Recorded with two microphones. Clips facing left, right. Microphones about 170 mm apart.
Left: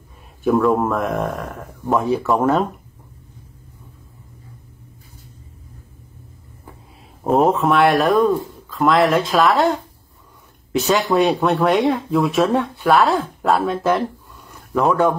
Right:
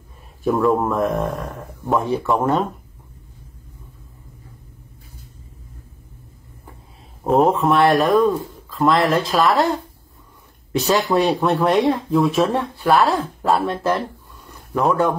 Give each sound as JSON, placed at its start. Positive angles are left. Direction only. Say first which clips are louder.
{"t": 0.5, "sound": "speech", "louder": "left 1 dB", "side_deg": 0}
{"t": 0.9, "sound": "speech", "louder": "right 1 dB", "side_deg": -30}
{"t": 1.9, "sound": "speech", "louder": "left 1 dB", "side_deg": 0}
{"t": 7.2, "sound": "speech", "louder": "even", "side_deg": 0}
{"t": 10.8, "sound": "speech", "louder": "left 1 dB", "side_deg": 0}